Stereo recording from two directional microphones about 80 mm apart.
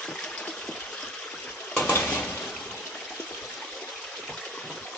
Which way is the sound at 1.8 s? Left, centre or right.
Centre.